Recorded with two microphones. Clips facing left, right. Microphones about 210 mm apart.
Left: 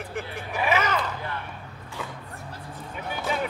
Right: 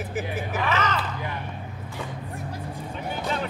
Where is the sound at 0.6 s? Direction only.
10° left (ahead or behind).